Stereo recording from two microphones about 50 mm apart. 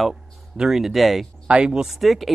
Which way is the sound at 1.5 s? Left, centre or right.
Centre.